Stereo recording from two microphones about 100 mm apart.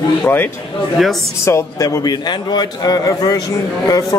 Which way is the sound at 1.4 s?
30° left (ahead or behind).